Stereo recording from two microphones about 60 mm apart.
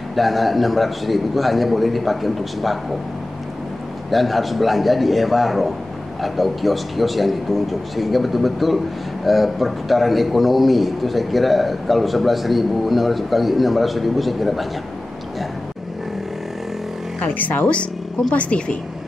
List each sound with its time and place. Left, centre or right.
0.1 s a man's voice: centre
4.1 s a man's voice: centre
17.2 s speech: left